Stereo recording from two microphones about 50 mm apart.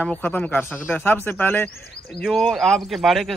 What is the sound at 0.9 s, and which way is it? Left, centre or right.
Speech, left.